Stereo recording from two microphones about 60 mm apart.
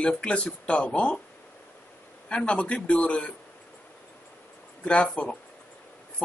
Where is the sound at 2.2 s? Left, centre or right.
Centre.